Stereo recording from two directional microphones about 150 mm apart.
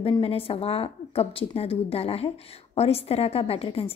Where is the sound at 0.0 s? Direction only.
40° left (ahead or behind).